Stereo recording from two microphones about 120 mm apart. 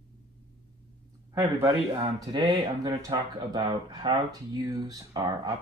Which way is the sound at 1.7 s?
35° right (ahead or behind).